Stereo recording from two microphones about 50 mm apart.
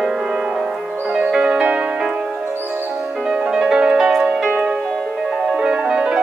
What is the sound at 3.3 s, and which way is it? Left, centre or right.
Music, centre.